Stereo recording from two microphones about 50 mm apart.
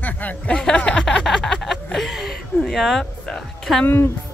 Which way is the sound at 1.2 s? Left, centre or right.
Centre.